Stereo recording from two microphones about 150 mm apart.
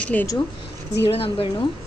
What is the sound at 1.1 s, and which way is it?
Speech, 40° left (ahead or behind).